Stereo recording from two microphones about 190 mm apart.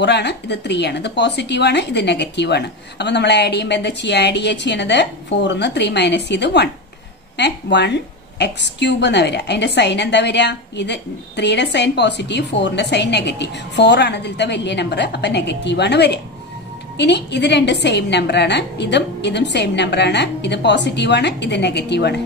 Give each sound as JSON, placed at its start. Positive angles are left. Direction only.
{"t": 0.0, "sound": "a woman's voice", "side_deg": 65}